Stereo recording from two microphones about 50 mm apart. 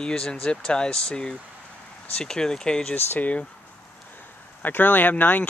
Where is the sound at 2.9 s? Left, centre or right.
Left.